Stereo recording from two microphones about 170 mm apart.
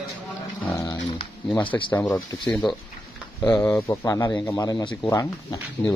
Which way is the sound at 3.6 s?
15° left (ahead or behind).